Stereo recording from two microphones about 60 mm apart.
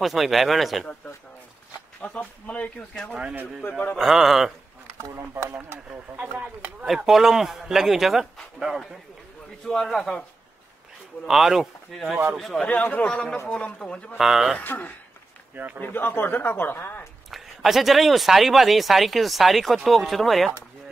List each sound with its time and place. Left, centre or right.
0.0 s speech: centre
2.0 s speech: left
3.9 s speech: centre
5.3 s speech: right
7.1 s speech: centre
9.7 s speech: centre
11.2 s speech: centre
12.6 s a man's voice: left
14.1 s speech: centre
14.6 s speech: left
15.5 s speech: right
15.8 s speech: left
17.3 s speech: centre